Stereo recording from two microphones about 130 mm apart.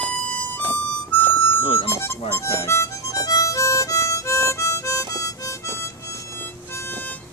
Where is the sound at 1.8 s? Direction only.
20° left (ahead or behind).